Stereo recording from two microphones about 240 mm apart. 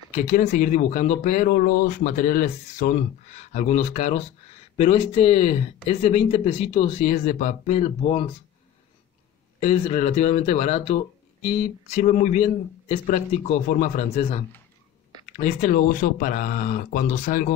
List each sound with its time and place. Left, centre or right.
0.1 s speech: left
9.6 s speech: left